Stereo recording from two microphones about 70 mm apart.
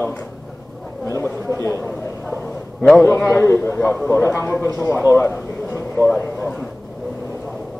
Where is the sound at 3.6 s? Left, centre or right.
Left.